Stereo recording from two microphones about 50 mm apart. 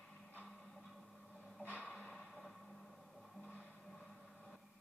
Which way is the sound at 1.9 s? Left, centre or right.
Centre.